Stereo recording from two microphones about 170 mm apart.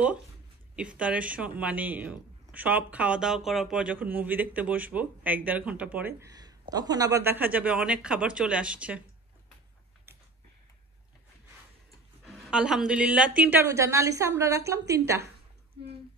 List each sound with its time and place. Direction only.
0.7 s speech: 5° right (ahead or behind)
12.3 s a woman's voice: 5° right (ahead or behind)